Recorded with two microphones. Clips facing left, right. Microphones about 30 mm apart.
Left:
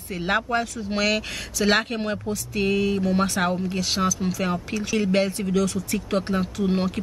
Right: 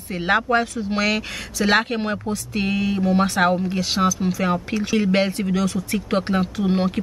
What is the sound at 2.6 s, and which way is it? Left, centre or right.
Speech, centre.